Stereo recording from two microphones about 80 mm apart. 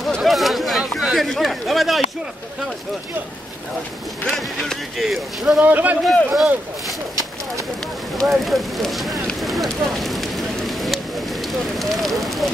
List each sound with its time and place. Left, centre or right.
0.2 s a sound: centre
4.2 s speech: centre
5.6 s speech: right
6.3 s speech: centre
8.2 s speech: centre
9.4 s a sound: centre